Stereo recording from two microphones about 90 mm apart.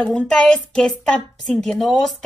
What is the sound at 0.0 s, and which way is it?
A woman's voice, 10° left (ahead or behind).